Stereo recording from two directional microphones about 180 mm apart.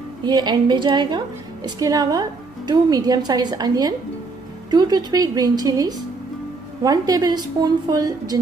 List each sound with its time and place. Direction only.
0.2 s a woman's voice: 25° right (ahead or behind)